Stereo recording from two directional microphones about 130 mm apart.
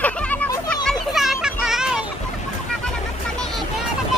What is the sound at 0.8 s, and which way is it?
Children playing, centre (ahead or behind).